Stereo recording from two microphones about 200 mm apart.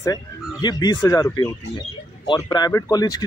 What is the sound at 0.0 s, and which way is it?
Speech, 20° left (ahead or behind).